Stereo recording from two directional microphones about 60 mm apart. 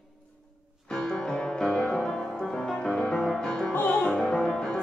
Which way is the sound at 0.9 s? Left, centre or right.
Centre.